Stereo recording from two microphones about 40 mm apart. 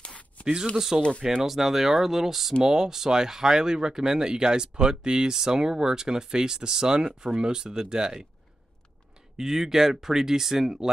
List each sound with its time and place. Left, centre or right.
0.0 s a sound: left
0.7 s speech: centre
9.4 s speech: centre